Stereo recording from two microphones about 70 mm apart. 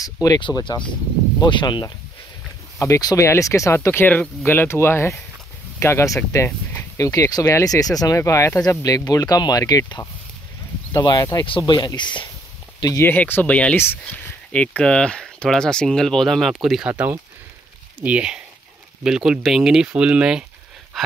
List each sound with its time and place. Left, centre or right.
0.0 s speech: left
1.4 s speech: left
3.2 s speech: left
8.2 s speech: left
8.6 s speech: left
13.0 s speech: left; by 16.9 s centre
16.9 s speech: right
20.9 s a sound: centre